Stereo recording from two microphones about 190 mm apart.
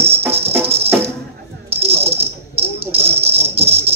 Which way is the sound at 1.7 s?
30° right (ahead or behind).